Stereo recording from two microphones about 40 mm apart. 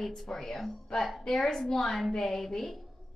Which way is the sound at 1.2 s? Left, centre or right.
Centre.